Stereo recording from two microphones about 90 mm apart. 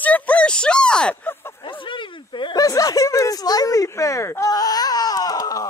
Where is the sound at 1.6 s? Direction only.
70° left (ahead or behind).